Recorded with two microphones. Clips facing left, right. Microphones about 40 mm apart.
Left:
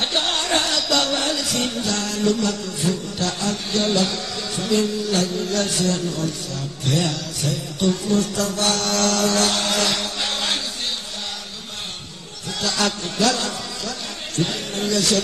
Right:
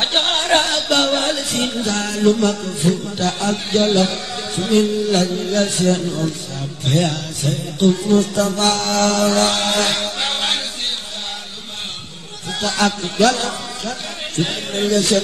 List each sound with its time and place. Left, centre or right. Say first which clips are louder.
0.0 s music: right 4 dB; right
8.1 s mantra: right 5 dB; right
12.4 s music: right 4 dB; right